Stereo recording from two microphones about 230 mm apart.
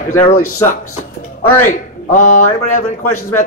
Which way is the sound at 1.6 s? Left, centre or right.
Left.